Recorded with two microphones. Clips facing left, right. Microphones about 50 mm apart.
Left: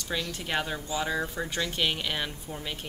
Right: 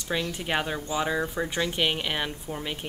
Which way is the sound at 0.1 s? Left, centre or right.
Centre.